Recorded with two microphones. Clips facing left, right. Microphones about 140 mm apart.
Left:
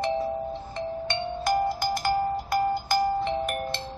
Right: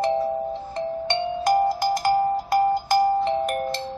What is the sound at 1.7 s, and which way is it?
Music, 40° right (ahead or behind).